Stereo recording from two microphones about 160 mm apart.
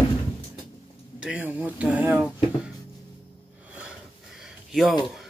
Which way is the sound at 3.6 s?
5° right (ahead or behind).